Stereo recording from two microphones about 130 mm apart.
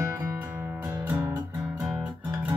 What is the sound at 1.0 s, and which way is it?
Music, 15° right (ahead or behind).